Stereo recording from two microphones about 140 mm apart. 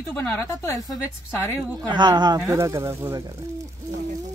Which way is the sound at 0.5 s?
20° left (ahead or behind).